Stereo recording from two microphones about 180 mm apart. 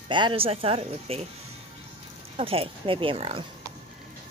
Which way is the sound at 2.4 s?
30° right (ahead or behind).